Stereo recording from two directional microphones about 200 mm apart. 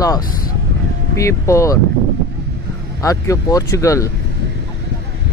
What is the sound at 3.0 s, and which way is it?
Speech, 15° left (ahead or behind).